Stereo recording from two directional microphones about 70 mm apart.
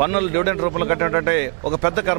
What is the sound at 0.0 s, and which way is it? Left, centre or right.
Speech, centre.